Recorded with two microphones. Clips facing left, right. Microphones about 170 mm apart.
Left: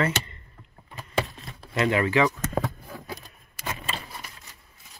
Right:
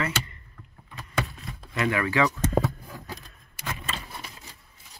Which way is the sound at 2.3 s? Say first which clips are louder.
Right 4 dB; 30° right (ahead or behind).